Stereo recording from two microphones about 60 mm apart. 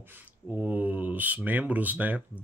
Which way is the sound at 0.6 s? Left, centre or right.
Right.